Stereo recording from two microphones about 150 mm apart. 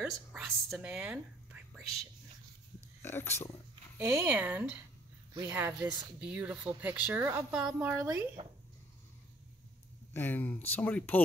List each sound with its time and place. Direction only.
0.0 s whispering: 5° right (ahead or behind)
3.0 s speech: 15° left (ahead or behind)
4.0 s speech: 15° right (ahead or behind)
8.4 s speech: 40° right (ahead or behind)
10.1 s speech: 15° left (ahead or behind)